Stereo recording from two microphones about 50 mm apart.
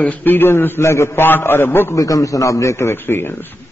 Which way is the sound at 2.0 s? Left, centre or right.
Left.